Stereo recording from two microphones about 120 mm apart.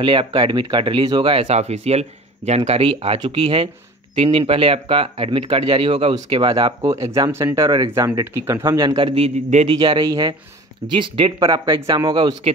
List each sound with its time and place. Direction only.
0.0 s speech: 45° right (ahead or behind)
1.5 s speech: 65° right (ahead or behind)
6.1 s speech: 40° right (ahead or behind)
8.8 s speech: 50° right (ahead or behind)
9.7 s speech: 45° right (ahead or behind)
10.0 s speech: 30° right (ahead or behind)
10.9 s speech: 45° right (ahead or behind)
11.3 s speech: 30° right (ahead or behind)
11.9 s speech: 40° right (ahead or behind)